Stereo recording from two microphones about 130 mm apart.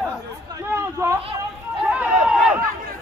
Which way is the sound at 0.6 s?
20° right (ahead or behind).